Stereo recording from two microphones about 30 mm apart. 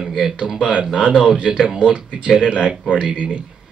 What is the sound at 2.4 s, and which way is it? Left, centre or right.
Speech, right.